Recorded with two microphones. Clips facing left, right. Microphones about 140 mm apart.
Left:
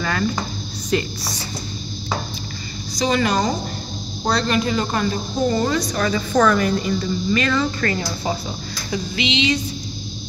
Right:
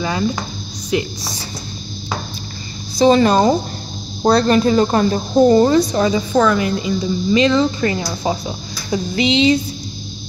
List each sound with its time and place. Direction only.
0.9 s speech: 10° right (ahead or behind)
3.1 s speech: 30° right (ahead or behind)
6.3 s a woman's voice: 5° right (ahead or behind)
7.0 s speech: 20° right (ahead or behind)
8.9 s speech: 35° right (ahead or behind)